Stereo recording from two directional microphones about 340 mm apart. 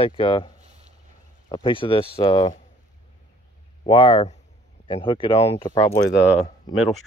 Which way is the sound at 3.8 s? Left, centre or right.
Centre.